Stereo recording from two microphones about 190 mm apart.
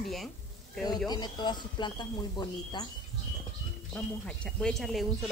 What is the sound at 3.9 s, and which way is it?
Speech, 5° left (ahead or behind).